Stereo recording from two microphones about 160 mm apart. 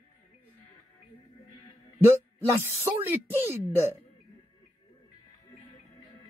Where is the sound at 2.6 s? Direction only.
15° right (ahead or behind).